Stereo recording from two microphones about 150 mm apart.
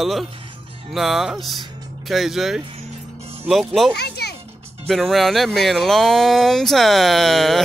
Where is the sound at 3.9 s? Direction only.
90° left.